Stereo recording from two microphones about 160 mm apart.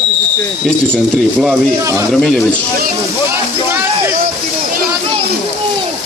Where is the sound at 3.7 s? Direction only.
15° right (ahead or behind).